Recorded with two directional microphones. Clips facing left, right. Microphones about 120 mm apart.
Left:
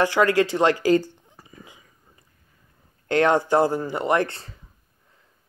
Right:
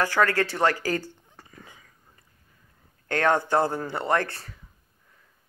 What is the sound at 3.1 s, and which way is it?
Speech, 20° left (ahead or behind).